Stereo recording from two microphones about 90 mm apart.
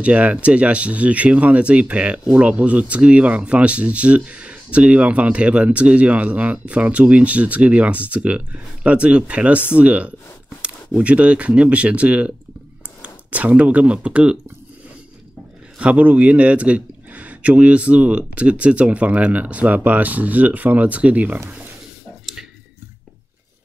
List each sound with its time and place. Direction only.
0.0 s speech: 15° right (ahead or behind)
15.8 s speech: 15° right (ahead or behind)
22.2 s a sound: 5° right (ahead or behind)